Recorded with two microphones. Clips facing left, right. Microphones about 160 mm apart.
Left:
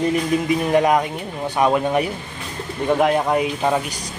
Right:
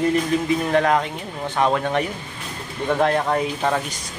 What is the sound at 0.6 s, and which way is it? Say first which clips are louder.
Speech: left 4 dB; 15° left (ahead or behind).